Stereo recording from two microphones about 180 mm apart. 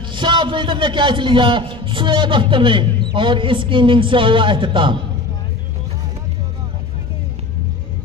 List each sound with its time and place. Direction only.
0.1 s a man's voice: 25° right (ahead or behind)